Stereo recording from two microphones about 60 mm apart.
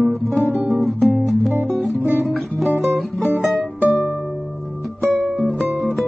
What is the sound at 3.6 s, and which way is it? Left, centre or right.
Music, centre.